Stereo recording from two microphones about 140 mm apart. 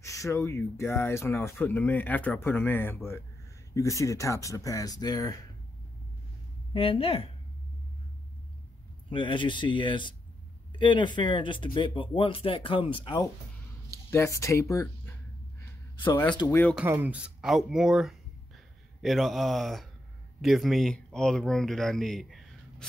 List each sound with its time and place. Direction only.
0.0 s speech: 20° left (ahead or behind)
6.7 s a woman's voice: 40° left (ahead or behind)
9.1 s speech: 35° left (ahead or behind)
13.8 s speech: 20° left (ahead or behind)
16.4 s speech: 15° left (ahead or behind)
16.7 s speech: 15° right (ahead or behind)